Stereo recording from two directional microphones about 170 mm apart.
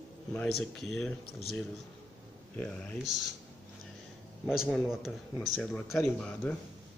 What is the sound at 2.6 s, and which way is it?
Speech, 5° left (ahead or behind).